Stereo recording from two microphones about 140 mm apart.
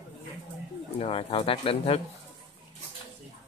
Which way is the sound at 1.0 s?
40° left (ahead or behind).